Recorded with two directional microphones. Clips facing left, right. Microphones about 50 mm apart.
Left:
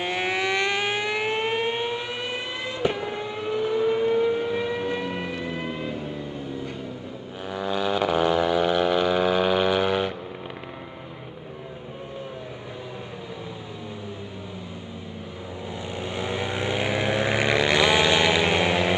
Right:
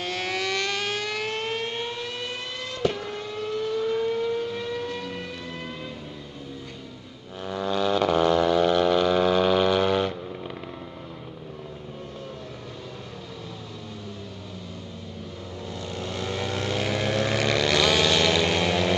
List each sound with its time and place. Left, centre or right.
0.0 s civil defense siren: left
7.4 s a sound: centre
15.8 s vehicle: centre